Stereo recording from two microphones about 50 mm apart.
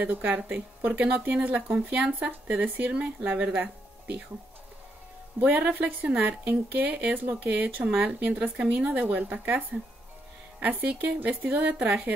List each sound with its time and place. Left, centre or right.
0.0 s speech: right
5.4 s speech: right
10.6 s speech: right